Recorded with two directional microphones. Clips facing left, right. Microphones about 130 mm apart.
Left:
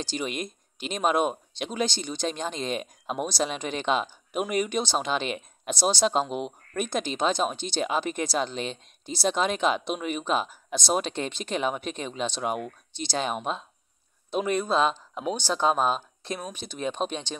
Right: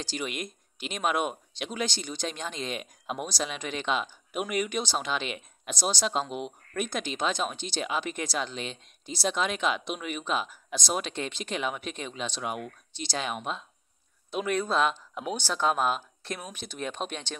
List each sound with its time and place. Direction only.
0.0 s speech: 25° left (ahead or behind)